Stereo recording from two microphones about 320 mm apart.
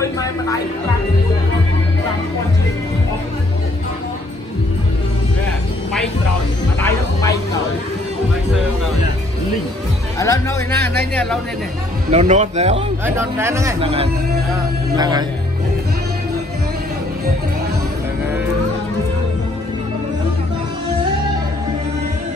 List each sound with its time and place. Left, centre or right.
0.0 s music: centre
6.8 s bow-wow: centre
10.1 s speech: centre
12.1 s a man's voice: right
13.0 s speech: centre